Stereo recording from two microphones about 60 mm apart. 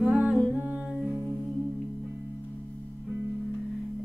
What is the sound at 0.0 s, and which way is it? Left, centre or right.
Humming, right.